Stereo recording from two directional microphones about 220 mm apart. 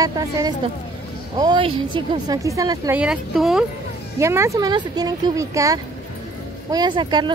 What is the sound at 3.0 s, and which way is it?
Speech, centre (ahead or behind).